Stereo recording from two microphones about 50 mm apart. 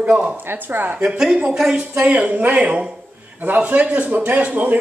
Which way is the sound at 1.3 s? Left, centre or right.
Right.